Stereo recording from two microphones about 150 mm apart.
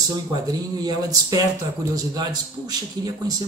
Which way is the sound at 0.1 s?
25° right (ahead or behind).